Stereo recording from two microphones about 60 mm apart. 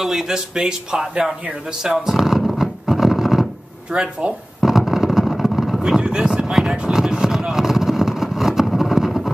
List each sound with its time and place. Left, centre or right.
0.0 s a man's voice: centre
1.8 s a sound: centre
3.9 s speech: centre
4.6 s a sound: centre
5.8 s speech: centre
6.5 s vehicle: centre